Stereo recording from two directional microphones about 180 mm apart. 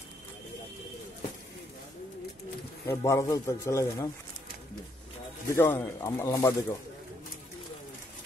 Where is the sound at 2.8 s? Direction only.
15° left (ahead or behind).